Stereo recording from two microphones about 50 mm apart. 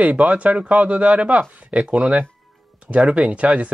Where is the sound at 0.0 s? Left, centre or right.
Right.